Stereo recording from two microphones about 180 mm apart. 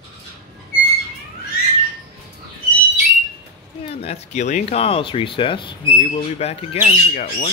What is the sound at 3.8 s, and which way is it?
Speech, 35° left (ahead or behind).